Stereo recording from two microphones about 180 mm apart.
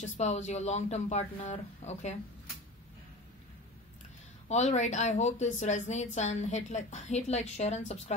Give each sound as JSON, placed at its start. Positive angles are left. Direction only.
{"t": 0.0, "sound": "a woman's voice", "side_deg": 40}
{"t": 4.5, "sound": "a woman's voice", "side_deg": 40}